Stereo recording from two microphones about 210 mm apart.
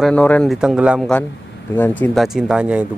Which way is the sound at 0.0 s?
5° left (ahead or behind).